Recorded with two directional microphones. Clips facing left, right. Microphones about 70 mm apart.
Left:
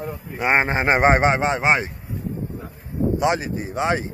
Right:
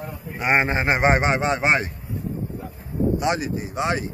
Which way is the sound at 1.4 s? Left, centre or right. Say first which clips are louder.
Left 1 dB; left.